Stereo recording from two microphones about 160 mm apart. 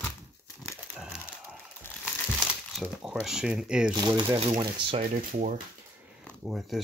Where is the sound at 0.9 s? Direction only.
10° right (ahead or behind).